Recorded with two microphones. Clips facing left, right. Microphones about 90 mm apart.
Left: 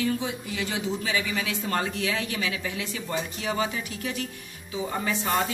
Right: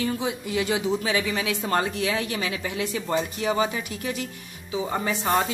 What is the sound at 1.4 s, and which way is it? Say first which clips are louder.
A woman's voice: right 3 dB; 25° right (ahead or behind).